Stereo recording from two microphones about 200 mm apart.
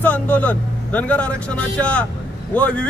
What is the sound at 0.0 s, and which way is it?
Speech, 5° left (ahead or behind).